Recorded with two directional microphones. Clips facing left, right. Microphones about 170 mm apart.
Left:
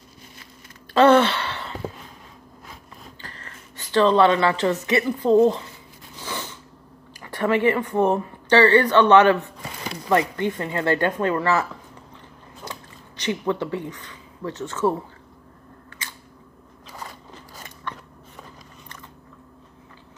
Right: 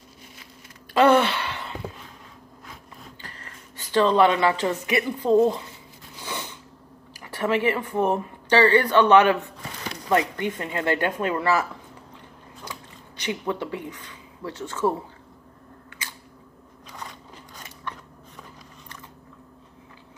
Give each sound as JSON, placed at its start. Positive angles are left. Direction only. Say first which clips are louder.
{"t": 0.9, "sound": "a sound", "louder": "left 2 dB", "side_deg": -10}
{"t": 3.2, "sound": "speech", "louder": "left 1 dB", "side_deg": -10}
{"t": 6.2, "sound": "a sound", "louder": "left 1 dB", "side_deg": -15}
{"t": 7.2, "sound": "speech", "louder": "left 3 dB", "side_deg": -5}
{"t": 10.4, "sound": "speech", "louder": "left 3 dB", "side_deg": -15}
{"t": 13.2, "sound": "speech", "louder": "left 3 dB", "side_deg": -10}